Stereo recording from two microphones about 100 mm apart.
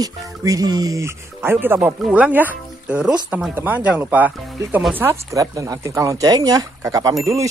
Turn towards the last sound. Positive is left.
turn(degrees=-35)  # may be behind; listen again after turning